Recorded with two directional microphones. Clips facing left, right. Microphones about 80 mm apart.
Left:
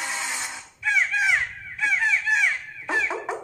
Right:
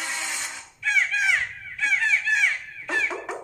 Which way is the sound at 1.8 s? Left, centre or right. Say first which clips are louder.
Left 1 dB; centre.